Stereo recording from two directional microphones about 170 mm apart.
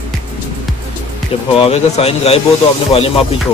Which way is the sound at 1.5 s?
35° left (ahead or behind).